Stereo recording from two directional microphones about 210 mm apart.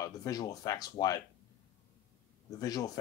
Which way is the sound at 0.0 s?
15° left (ahead or behind).